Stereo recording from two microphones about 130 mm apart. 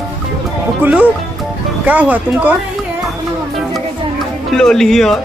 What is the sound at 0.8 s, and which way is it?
Speech, 10° right (ahead or behind).